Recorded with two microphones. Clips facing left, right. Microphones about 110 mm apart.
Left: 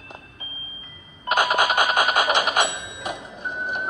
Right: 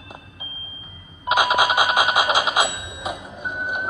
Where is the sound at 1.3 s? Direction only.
10° right (ahead or behind).